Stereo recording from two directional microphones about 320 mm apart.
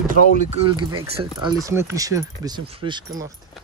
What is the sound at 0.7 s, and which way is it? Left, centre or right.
Speech, centre.